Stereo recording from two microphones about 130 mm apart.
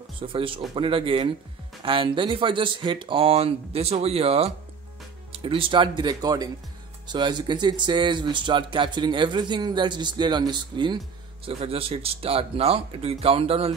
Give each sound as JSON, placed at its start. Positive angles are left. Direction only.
{"t": 0.2, "sound": "speech", "side_deg": -40}
{"t": 11.4, "sound": "speech", "side_deg": -45}